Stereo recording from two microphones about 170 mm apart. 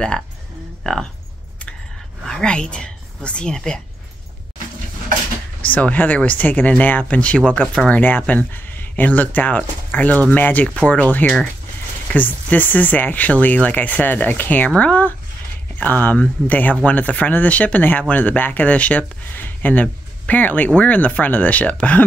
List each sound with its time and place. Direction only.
0.8 s speech: 5° left (ahead or behind)
2.2 s speech: 5° left (ahead or behind)
5.6 s speech: 10° left (ahead or behind)